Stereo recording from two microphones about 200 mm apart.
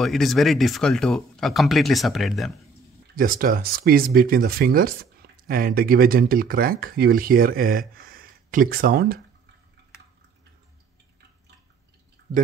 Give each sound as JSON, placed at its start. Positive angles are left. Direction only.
{"t": 0.0, "sound": "speech", "side_deg": 0}
{"t": 3.2, "sound": "speech", "side_deg": -45}
{"t": 7.9, "sound": "a sound", "side_deg": -45}